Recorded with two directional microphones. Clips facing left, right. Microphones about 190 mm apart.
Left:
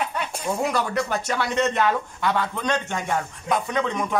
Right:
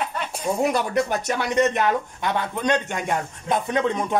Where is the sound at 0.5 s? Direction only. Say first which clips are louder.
Right 3 dB; 20° right (ahead or behind).